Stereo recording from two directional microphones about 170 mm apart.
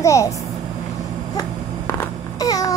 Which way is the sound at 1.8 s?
15° left (ahead or behind).